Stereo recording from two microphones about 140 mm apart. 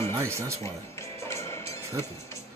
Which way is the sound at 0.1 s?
20° right (ahead or behind).